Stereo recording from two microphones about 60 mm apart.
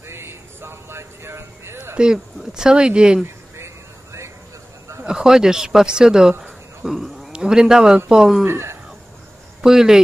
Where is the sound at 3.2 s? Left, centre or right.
Right.